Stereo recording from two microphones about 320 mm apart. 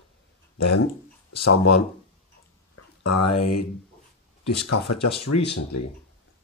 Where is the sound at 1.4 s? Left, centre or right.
Left.